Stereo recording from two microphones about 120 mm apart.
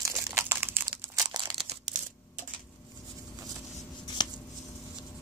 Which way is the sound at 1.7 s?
90° right.